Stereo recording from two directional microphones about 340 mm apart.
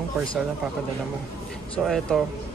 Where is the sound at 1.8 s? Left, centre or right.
Centre.